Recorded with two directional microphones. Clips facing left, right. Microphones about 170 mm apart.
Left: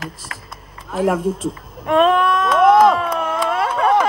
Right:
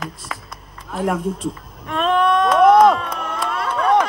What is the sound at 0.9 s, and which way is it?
Speech, centre (ahead or behind).